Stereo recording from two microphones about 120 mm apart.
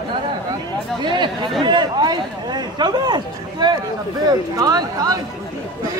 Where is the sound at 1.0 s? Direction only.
40° right (ahead or behind).